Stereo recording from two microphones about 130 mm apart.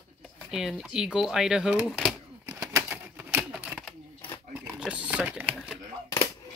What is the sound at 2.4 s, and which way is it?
Bird, 20° right (ahead or behind).